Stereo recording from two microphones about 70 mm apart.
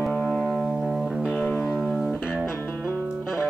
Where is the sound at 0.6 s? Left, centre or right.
Centre.